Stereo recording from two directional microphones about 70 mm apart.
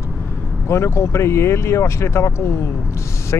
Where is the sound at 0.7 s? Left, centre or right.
Left.